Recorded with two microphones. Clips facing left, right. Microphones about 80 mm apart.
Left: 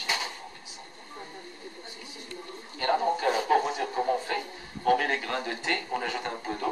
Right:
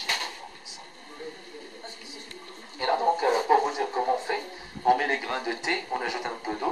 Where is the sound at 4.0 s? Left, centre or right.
Right.